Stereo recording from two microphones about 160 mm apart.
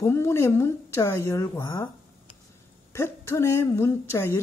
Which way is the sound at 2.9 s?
15° left (ahead or behind).